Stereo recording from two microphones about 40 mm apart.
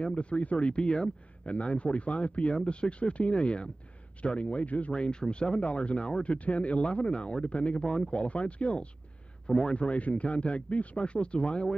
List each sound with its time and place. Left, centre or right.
0.0 s speech: left
9.5 s speech: centre
9.8 s speech: left